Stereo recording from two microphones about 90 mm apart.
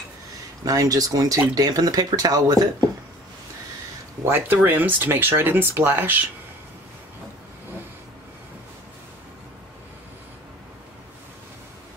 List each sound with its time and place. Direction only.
0.7 s speech: 40° right (ahead or behind)
4.2 s speech: 25° right (ahead or behind)